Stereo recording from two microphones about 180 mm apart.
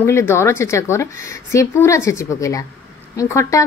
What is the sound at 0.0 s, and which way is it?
A woman's voice, 15° left (ahead or behind).